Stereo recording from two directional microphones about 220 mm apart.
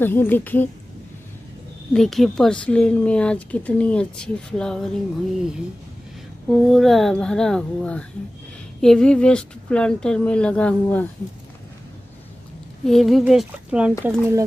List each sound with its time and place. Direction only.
0.0 s a woman's voice: 10° left (ahead or behind)
2.0 s speech: centre (ahead or behind)
6.5 s speech: centre (ahead or behind)
12.8 s speech: centre (ahead or behind)